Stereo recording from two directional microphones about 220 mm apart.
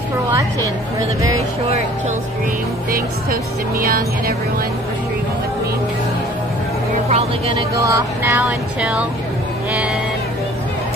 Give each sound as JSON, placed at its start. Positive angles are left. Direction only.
{"t": 0.3, "sound": "speech", "side_deg": -15}
{"t": 7.1, "sound": "speech", "side_deg": -25}